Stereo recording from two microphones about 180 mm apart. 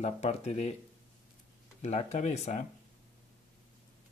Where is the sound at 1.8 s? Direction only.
35° left (ahead or behind).